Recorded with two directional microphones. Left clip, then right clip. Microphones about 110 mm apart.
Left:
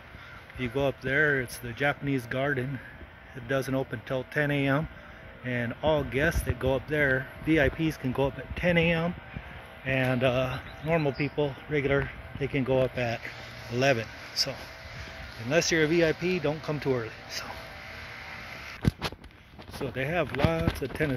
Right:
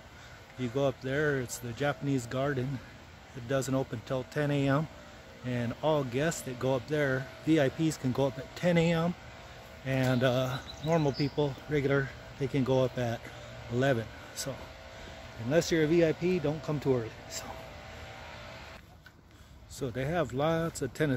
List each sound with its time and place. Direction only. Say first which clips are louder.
0.6 s speech: left 2 dB; 15° right (ahead or behind)
8.5 s speech: left 3 dB; 35° right (ahead or behind)
15.5 s speech: left 2 dB; 35° right (ahead or behind)
19.8 s speech: left 3 dB; 30° right (ahead or behind)